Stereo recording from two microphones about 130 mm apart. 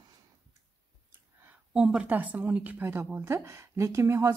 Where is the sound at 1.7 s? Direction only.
5° right (ahead or behind).